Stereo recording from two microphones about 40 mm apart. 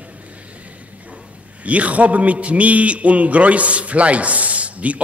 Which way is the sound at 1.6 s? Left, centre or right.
Right.